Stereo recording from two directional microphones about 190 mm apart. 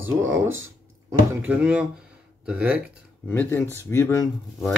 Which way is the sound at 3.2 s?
10° left (ahead or behind).